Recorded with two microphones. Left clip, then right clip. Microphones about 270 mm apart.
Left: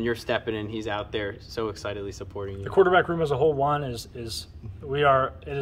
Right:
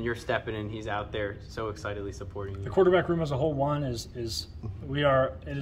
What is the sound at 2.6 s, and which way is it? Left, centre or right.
Speech, centre.